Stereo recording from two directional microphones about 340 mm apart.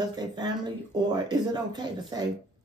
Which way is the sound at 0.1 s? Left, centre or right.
Centre.